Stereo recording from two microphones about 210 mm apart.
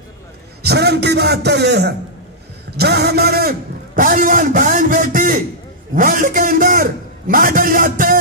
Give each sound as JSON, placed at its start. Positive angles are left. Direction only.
{"t": 0.6, "sound": "a man's voice", "side_deg": -50}